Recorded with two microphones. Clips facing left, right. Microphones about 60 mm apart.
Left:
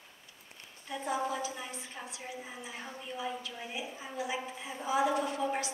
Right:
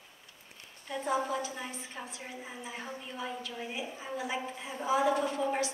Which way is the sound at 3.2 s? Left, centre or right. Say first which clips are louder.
Even; centre.